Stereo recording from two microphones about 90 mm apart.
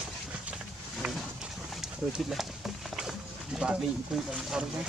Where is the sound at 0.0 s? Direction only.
10° right (ahead or behind).